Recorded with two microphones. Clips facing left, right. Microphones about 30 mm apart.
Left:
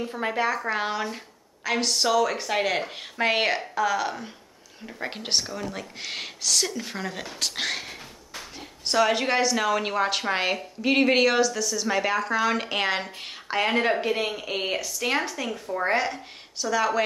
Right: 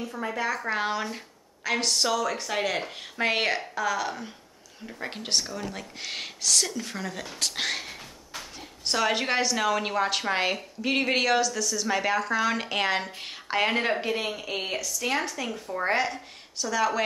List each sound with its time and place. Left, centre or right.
0.0 s speech: left
0.7 s a woman's voice: centre
14.8 s speech: centre
15.3 s a woman's voice: centre